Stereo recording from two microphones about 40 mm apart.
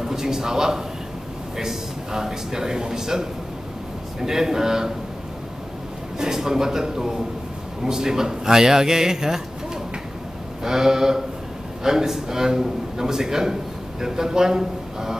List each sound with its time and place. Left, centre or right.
0.0 s a sound: centre
1.6 s a man's voice: centre
6.1 s a man's voice: centre
10.6 s a man's voice: centre